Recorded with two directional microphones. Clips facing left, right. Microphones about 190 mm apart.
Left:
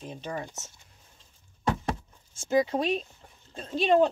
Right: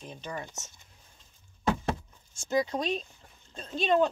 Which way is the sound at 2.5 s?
30° left (ahead or behind).